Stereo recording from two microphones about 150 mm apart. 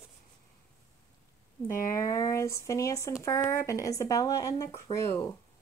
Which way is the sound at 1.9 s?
20° left (ahead or behind).